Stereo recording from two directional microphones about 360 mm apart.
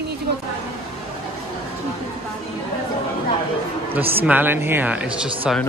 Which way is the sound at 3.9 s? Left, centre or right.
Centre.